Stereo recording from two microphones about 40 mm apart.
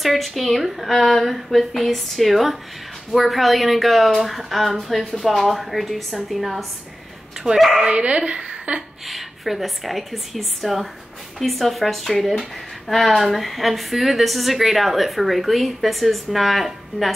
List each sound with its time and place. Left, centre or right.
0.0 s speech: centre
7.8 s speech: right
8.3 s a sound: right
9.0 s speech: centre